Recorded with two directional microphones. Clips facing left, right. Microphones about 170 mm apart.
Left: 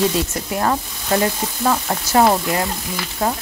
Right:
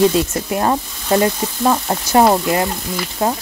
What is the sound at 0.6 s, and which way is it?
Speech, 25° right (ahead or behind).